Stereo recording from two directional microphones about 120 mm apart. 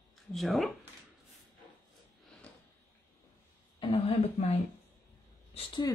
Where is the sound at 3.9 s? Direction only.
55° left (ahead or behind).